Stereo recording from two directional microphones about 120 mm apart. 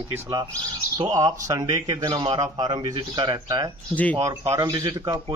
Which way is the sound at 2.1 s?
45° right (ahead or behind).